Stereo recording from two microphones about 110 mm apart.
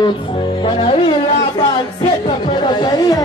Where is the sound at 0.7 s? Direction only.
50° left (ahead or behind).